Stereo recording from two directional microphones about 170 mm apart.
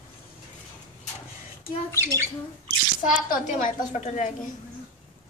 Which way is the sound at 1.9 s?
15° right (ahead or behind).